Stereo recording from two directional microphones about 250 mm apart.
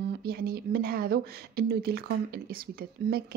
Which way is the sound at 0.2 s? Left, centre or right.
Right.